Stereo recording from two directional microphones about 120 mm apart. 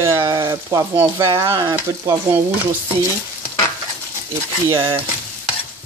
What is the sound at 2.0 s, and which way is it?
Stir, 25° right (ahead or behind).